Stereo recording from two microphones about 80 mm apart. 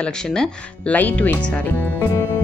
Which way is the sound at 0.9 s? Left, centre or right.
Centre.